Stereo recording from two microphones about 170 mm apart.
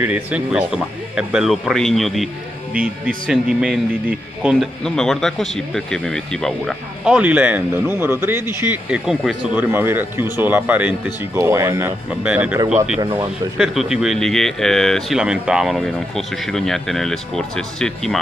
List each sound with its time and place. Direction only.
0.0 s speech: 10° right (ahead or behind)
3.3 s speech: 5° right (ahead or behind)
7.2 s speech: 10° right (ahead or behind)
13.0 s speech: 25° right (ahead or behind)
13.6 s speech: 5° right (ahead or behind)